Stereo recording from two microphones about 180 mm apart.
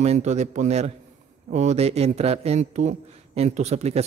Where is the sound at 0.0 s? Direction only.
35° right (ahead or behind).